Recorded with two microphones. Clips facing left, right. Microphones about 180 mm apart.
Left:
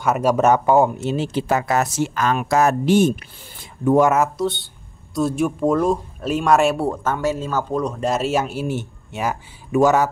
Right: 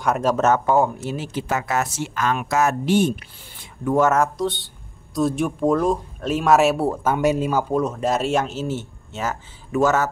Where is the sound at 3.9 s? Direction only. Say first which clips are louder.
Left 1 dB; 10° left (ahead or behind).